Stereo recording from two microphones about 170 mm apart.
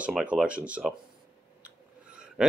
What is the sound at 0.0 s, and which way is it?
Speech, 5° right (ahead or behind).